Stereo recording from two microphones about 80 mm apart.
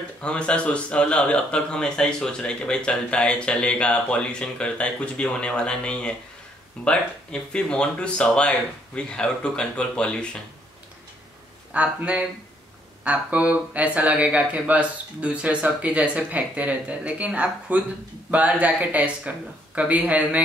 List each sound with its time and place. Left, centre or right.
0.2 s speech: centre
11.7 s speech: centre